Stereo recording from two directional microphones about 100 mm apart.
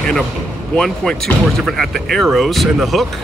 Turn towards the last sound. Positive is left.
turn(degrees=0)  # may be behind; listen again after turning